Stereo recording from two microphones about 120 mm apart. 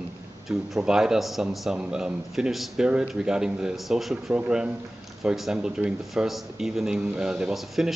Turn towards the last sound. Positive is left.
turn(degrees=-5)  # may be behind; listen again after turning